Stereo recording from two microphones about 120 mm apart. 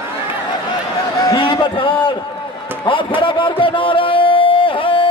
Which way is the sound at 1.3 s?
45° left (ahead or behind).